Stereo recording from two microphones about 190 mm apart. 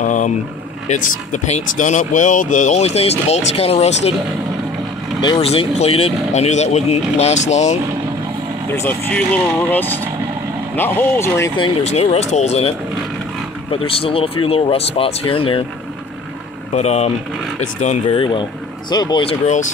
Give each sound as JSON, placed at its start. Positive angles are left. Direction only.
{"t": 0.0, "sound": "a sound", "side_deg": 40}
{"t": 1.3, "sound": "speech", "side_deg": 40}
{"t": 5.2, "sound": "speech", "side_deg": 25}
{"t": 9.1, "sound": "speech", "side_deg": 5}
{"t": 11.5, "sound": "speech", "side_deg": 30}
{"t": 16.7, "sound": "speech", "side_deg": 35}
{"t": 18.9, "sound": "speech", "side_deg": 20}